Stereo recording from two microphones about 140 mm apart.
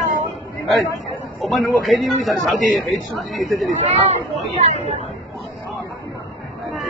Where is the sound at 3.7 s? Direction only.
50° right (ahead or behind).